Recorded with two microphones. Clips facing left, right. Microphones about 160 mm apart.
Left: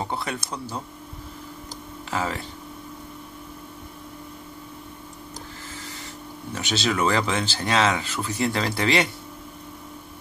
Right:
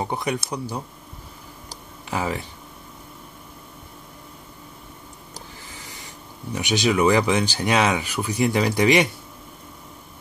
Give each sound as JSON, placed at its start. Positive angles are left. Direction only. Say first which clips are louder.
{"t": 0.0, "sound": "speech", "louder": "right 4 dB", "side_deg": -15}
{"t": 2.0, "sound": "speech", "louder": "right 2 dB", "side_deg": -15}
{"t": 5.8, "sound": "owl", "louder": "left 3 dB", "side_deg": -15}
{"t": 6.5, "sound": "speech", "louder": "right 4 dB", "side_deg": -15}